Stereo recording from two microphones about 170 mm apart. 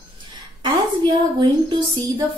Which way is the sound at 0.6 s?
25° right (ahead or behind).